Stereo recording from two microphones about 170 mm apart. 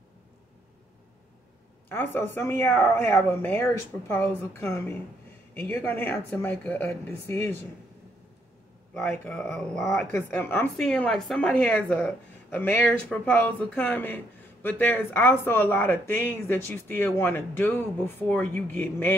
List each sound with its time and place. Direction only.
1.9 s a woman's voice: 10° left (ahead or behind)
9.2 s a woman's voice: 5° left (ahead or behind)